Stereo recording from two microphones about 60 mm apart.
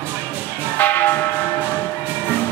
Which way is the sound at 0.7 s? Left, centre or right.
Left.